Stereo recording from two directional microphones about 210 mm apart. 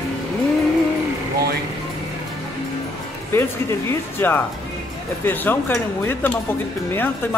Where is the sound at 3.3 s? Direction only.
10° left (ahead or behind).